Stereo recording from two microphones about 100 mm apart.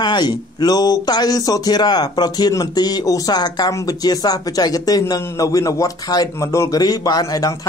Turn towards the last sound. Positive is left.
turn(degrees=35)  # may be behind; listen again after turning